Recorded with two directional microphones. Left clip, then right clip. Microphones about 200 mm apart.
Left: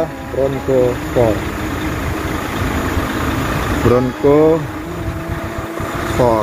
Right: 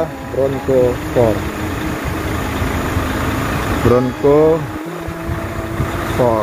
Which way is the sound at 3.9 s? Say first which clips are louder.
Even; centre (ahead or behind).